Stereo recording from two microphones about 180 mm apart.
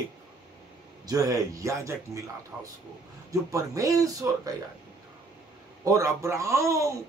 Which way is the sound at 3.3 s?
20° right (ahead or behind).